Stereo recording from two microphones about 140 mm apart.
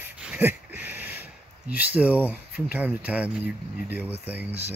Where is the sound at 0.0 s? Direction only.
10° right (ahead or behind).